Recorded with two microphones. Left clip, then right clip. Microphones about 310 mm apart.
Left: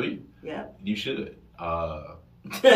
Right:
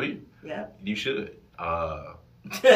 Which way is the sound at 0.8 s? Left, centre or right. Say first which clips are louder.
Right 2 dB; centre.